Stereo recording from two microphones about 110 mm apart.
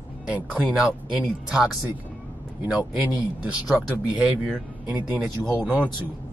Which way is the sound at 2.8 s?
40° left (ahead or behind).